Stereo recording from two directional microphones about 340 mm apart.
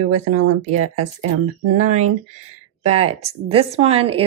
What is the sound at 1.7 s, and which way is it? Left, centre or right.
Speech, right.